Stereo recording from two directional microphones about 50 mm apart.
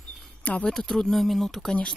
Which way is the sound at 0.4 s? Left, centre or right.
Left.